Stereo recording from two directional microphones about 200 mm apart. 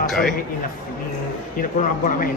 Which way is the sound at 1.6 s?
40° left (ahead or behind).